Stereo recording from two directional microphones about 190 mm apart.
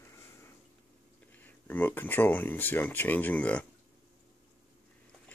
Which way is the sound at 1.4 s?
10° left (ahead or behind).